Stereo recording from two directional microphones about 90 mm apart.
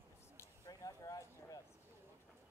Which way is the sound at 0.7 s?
40° left (ahead or behind).